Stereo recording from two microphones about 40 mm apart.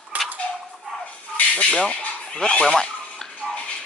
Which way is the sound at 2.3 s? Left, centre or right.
Left.